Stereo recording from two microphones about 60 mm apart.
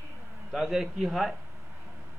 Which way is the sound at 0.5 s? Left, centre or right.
Centre.